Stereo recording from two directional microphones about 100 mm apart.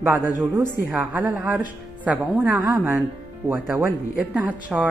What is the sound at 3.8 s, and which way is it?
Speech, 10° right (ahead or behind).